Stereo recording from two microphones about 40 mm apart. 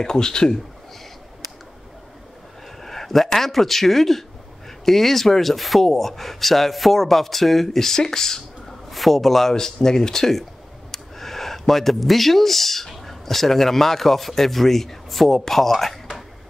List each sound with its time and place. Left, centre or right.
0.0 s a man's voice: centre
2.8 s speech: centre